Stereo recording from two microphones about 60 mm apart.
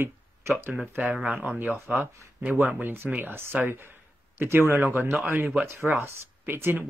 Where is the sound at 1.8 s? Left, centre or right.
Right.